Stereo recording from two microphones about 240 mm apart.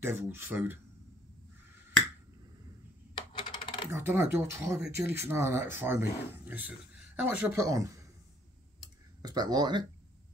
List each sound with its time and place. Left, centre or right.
0.0 s speech: centre
3.2 s coin: centre
3.9 s speech: centre
9.2 s speech: centre